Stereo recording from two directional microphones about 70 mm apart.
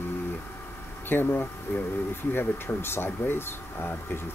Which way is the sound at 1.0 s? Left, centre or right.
Left.